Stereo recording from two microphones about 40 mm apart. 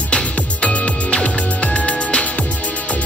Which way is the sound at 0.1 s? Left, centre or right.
Left.